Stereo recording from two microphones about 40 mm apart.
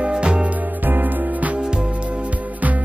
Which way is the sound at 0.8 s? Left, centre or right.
Right.